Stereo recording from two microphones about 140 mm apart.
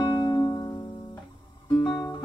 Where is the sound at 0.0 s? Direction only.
30° left (ahead or behind).